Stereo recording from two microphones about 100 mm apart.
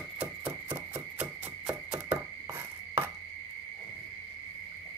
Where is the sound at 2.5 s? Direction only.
25° right (ahead or behind).